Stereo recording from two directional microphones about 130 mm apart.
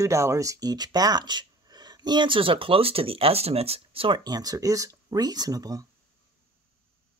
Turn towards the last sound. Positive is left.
turn(degrees=-30)  # may be behind; listen again after turning